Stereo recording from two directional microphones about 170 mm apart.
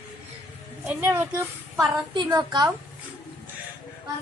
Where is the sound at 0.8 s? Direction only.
10° right (ahead or behind).